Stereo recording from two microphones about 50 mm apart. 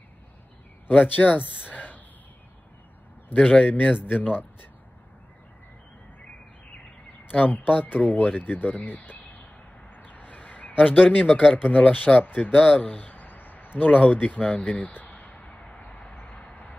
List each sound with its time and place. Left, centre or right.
0.8 s speech: left
1.6 s a sound: left
3.3 s speech: left
3.6 s speech: left
7.2 s speech: left
9.9 s vehicle: left
10.8 s speech: left
12.5 s speech: left
13.1 s a sound: left
15.8 s vehicle: left